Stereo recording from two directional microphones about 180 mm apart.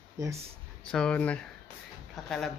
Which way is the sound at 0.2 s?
20° right (ahead or behind).